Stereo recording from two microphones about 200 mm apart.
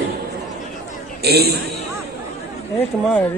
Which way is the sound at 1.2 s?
55° right (ahead or behind).